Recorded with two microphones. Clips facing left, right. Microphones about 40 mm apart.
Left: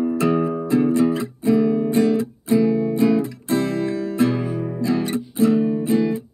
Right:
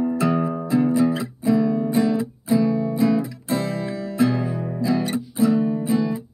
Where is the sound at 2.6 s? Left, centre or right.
Centre.